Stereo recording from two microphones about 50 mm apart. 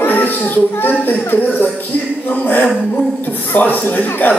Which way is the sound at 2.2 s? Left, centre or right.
Left.